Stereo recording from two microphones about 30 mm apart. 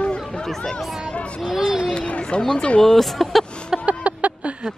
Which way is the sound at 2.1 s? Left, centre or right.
Left.